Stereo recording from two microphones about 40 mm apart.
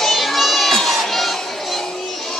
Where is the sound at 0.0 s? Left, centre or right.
Centre.